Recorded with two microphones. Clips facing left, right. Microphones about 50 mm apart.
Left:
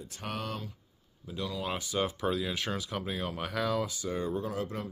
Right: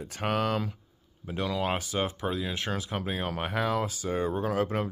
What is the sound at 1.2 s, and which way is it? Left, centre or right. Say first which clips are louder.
Speech: right 5 dB; right.